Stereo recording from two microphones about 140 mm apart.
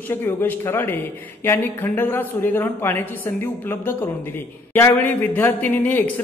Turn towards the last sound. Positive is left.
turn(degrees=15)  # may be behind; listen again after turning